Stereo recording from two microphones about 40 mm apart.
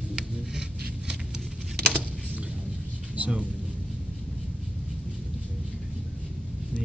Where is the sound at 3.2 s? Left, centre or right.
Right.